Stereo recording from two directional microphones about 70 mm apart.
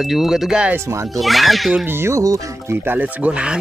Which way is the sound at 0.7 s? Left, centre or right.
Right.